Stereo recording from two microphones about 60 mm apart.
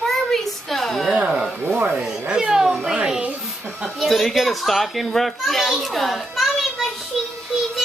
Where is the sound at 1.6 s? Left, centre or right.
Right.